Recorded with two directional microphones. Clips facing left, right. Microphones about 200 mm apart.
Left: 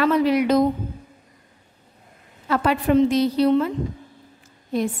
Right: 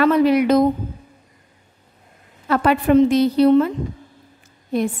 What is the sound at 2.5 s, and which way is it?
A woman's voice, 55° right (ahead or behind).